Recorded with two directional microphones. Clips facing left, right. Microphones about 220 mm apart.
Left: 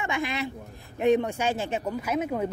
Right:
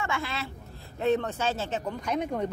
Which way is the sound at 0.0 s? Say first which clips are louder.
Left 3 dB; 15° left (ahead or behind).